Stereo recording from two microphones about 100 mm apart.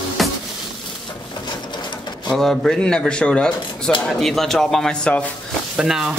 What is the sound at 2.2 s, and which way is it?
A man's voice, 5° left (ahead or behind).